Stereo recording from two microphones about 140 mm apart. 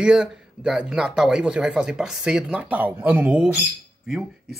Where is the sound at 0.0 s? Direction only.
5° right (ahead or behind).